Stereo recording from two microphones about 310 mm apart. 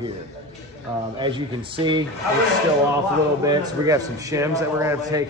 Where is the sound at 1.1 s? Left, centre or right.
Centre.